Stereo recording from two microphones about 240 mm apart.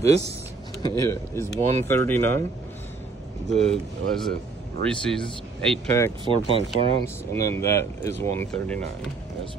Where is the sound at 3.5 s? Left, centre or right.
Centre.